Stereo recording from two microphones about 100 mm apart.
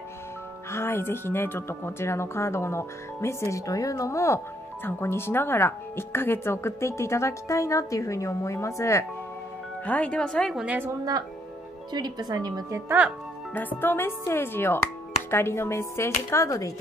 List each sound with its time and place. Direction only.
0.7 s speech: 25° left (ahead or behind)
9.8 s speech: 10° left (ahead or behind)
10.5 s a woman's voice: 10° right (ahead or behind)
11.9 s a woman's voice: 45° right (ahead or behind)
13.5 s speech: 20° left (ahead or behind); by 16.7 s 35° left (ahead or behind)